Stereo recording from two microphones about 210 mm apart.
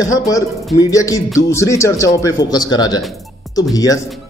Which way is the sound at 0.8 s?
15° left (ahead or behind).